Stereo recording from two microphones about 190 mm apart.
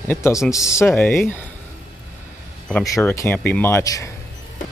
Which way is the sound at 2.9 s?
15° left (ahead or behind).